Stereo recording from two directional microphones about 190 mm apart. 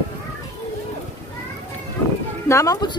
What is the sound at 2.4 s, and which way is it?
Speech, 15° left (ahead or behind).